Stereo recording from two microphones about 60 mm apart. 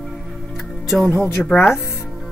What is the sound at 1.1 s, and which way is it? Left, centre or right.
Speech, left.